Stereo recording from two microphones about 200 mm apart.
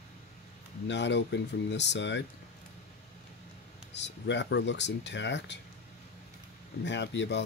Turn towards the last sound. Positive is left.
turn(degrees=65)  # may be behind; listen again after turning